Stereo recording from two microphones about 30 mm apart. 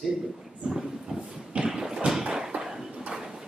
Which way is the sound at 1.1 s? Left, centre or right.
Right.